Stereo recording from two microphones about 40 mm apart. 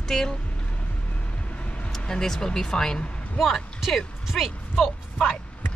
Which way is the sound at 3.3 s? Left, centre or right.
Centre.